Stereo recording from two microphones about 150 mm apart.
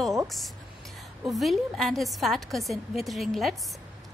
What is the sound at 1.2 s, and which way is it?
Speech, centre (ahead or behind).